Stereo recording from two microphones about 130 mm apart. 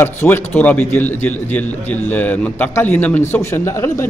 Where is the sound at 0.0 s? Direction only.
15° left (ahead or behind).